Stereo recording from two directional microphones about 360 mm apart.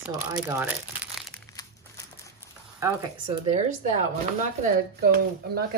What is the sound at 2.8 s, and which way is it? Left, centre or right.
Speech, centre.